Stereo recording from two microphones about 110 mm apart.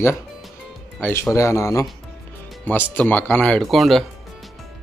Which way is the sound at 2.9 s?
15° left (ahead or behind).